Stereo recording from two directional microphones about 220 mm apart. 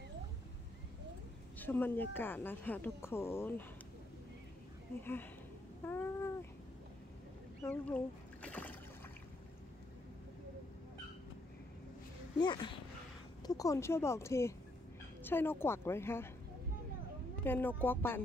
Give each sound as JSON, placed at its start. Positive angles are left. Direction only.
{"t": 1.6, "sound": "a woman's voice", "side_deg": 10}
{"t": 5.9, "sound": "a sound", "side_deg": 10}
{"t": 7.7, "sound": "speech", "side_deg": 5}
{"t": 12.4, "sound": "a woman's voice", "side_deg": 20}
{"t": 17.4, "sound": "a woman's voice", "side_deg": 10}